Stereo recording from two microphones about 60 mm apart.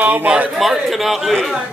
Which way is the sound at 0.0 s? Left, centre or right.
Right.